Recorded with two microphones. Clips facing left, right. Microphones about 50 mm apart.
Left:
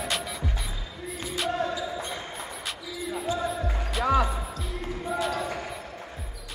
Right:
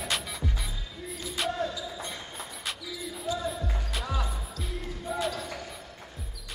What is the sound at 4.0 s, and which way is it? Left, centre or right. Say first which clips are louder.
Music: left 12 dB; left.